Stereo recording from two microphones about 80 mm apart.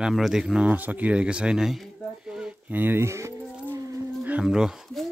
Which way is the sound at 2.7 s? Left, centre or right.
Right.